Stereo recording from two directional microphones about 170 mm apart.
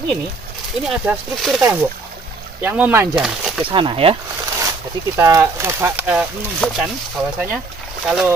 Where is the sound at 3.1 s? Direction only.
Centre (ahead or behind).